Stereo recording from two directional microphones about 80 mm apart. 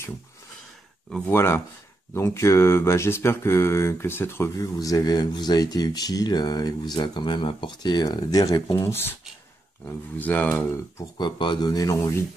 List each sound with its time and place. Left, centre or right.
1.3 s speech: left
4.6 s speech: left
8.7 s speech: left
10.1 s speech: centre
11.1 s speech: left
11.7 s speech: left